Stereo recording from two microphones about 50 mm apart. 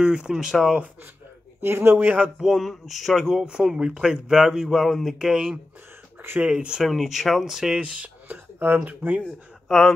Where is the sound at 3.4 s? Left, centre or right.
Centre.